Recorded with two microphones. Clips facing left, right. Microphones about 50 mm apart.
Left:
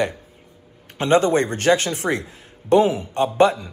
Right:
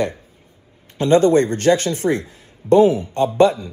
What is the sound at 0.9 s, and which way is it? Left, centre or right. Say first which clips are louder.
Speech: right 3 dB; left.